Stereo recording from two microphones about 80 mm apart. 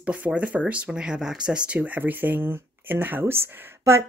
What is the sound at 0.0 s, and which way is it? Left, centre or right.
Speech, centre.